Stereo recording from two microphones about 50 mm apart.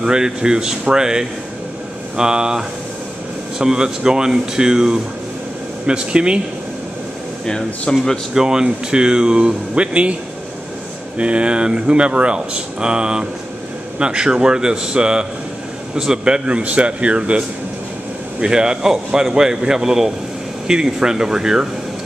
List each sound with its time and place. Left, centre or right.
0.0 s speech: centre
7.4 s speech: centre
8.4 s speech: centre
11.1 s speech: right